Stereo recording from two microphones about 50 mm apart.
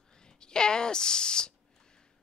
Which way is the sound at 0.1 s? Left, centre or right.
Centre.